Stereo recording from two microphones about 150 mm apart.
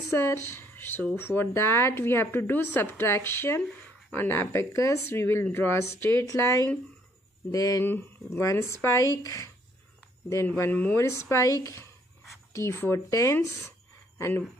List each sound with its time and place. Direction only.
0.1 s speech: 15° left (ahead or behind)
10.6 s speech: 10° left (ahead or behind)
13.7 s a sound: 20° left (ahead or behind)